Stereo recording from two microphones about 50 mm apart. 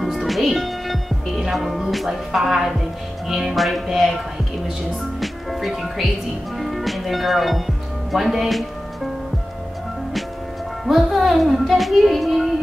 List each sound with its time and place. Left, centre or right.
0.0 s music: centre
5.2 s music: centre
8.1 s speech: centre
10.9 s music: centre